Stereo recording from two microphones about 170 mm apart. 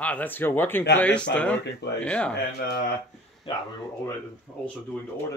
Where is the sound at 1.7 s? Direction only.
90° left.